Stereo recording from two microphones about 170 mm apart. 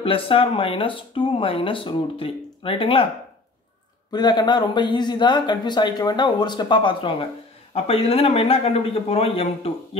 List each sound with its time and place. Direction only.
0.0 s speech: 30° left (ahead or behind)
4.1 s speech: 25° left (ahead or behind)